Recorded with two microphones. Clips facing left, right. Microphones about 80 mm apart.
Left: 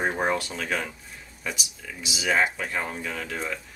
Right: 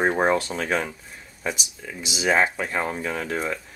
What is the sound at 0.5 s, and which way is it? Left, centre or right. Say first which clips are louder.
Speech: right 4 dB; right.